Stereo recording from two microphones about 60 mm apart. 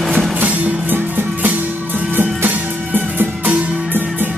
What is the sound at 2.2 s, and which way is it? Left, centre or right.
Music, right.